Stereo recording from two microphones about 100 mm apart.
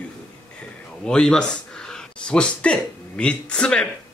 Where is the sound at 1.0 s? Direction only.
5° left (ahead or behind).